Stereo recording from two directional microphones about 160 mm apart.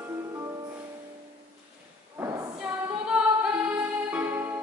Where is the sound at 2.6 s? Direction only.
5° right (ahead or behind).